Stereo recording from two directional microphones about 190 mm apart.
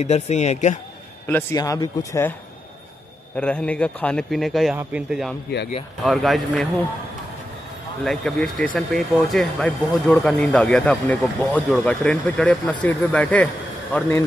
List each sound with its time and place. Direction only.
0.0 s speech: 35° left (ahead or behind)
1.2 s speech: 15° left (ahead or behind)
3.3 s speech: 5° left (ahead or behind)
8.0 s speech: 5° left (ahead or behind)